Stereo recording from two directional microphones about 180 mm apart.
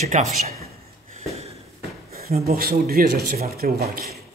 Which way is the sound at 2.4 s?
55° right (ahead or behind).